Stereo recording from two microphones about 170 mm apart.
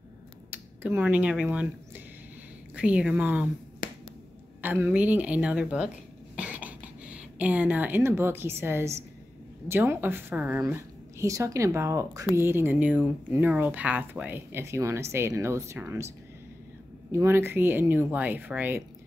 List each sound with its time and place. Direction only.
0.5 s speech: 10° right (ahead or behind)
2.7 s speech: 5° right (ahead or behind)
3.8 s finger snapping: 50° left (ahead or behind)
4.6 s speech: 10° right (ahead or behind)
6.3 s a sound: 10° right (ahead or behind)
9.7 s speech: 15° right (ahead or behind)
17.1 s speech: 15° right (ahead or behind)